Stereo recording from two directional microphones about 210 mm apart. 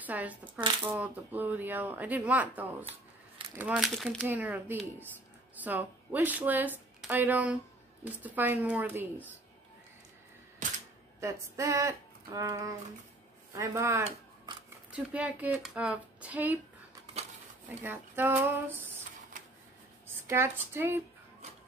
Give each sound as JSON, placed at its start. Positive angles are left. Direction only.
{"t": 0.0, "sound": "speech", "side_deg": -5}
{"t": 2.9, "sound": "scissors", "side_deg": -25}
{"t": 3.5, "sound": "speech", "side_deg": -5}
{"t": 11.1, "sound": "speech", "side_deg": -15}
{"t": 14.0, "sound": "a sound", "side_deg": -20}
{"t": 14.9, "sound": "speech", "side_deg": -5}
{"t": 17.0, "sound": "a sound", "side_deg": -30}
{"t": 17.6, "sound": "speech", "side_deg": -10}
{"t": 20.2, "sound": "speech", "side_deg": -10}